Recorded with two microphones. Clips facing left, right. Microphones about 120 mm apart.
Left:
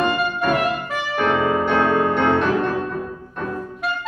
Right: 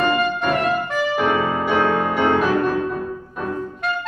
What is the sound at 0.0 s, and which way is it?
Music, centre (ahead or behind).